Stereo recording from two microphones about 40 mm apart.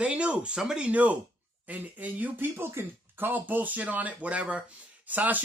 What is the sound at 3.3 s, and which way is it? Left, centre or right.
Speech, right.